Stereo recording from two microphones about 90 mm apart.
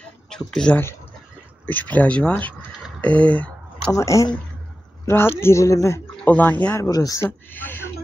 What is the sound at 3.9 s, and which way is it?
Speech, 35° left (ahead or behind).